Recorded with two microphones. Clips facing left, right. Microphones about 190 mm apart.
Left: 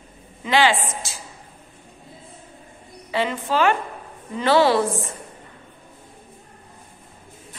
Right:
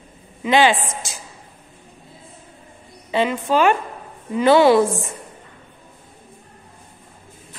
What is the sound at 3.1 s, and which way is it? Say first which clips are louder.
A woman's voice: right 4 dB; 15° right (ahead or behind).